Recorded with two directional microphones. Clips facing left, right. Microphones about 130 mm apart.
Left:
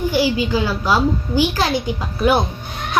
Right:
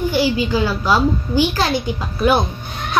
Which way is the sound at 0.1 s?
10° left (ahead or behind).